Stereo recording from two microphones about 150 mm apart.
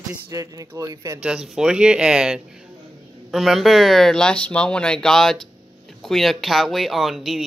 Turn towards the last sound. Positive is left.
turn(degrees=0)  # may be behind; listen again after turning